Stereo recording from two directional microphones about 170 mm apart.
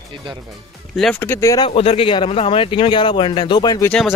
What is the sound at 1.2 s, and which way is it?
Speech, 15° left (ahead or behind).